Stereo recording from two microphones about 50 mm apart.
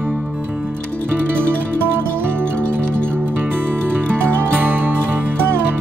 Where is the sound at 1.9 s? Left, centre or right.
Right.